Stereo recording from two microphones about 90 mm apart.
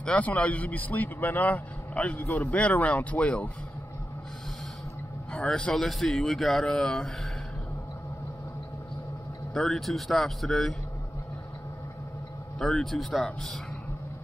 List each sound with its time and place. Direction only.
0.0 s a man's voice: 15° left (ahead or behind)
5.3 s speech: 10° left (ahead or behind)
9.5 s speech: 5° left (ahead or behind)
12.5 s speech: 5° left (ahead or behind)